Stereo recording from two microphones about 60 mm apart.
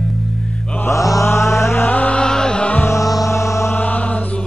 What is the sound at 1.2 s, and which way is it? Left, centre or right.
Mantra, left.